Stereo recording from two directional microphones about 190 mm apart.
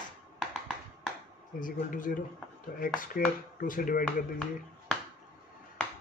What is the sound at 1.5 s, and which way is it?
Speech, 45° left (ahead or behind).